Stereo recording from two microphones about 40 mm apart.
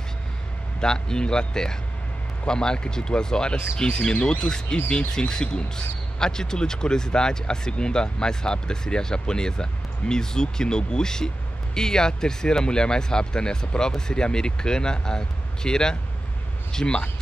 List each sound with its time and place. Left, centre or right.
0.7 s speech: centre